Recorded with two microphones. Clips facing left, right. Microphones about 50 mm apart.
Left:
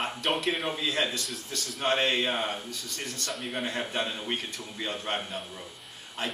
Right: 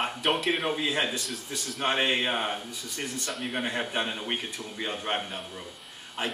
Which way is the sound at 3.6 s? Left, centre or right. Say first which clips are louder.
Right 1 dB; centre.